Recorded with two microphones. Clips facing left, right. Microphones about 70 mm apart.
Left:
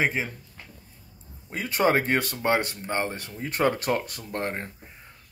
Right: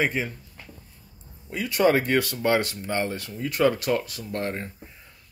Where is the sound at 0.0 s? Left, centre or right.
Left.